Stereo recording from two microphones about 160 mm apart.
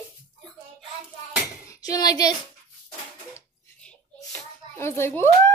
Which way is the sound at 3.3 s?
10° left (ahead or behind).